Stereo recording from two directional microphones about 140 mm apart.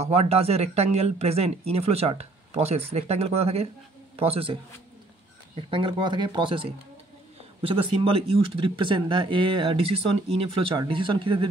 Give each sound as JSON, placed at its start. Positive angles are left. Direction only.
{"t": 0.0, "sound": "speech", "side_deg": -50}
{"t": 5.6, "sound": "speech", "side_deg": -40}